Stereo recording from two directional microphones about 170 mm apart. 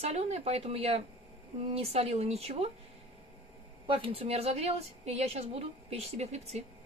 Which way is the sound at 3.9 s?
35° right (ahead or behind).